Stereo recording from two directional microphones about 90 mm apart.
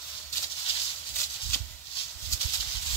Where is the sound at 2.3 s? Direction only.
35° left (ahead or behind).